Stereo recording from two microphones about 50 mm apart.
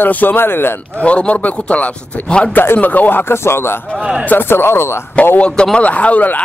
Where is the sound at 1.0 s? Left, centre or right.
Left.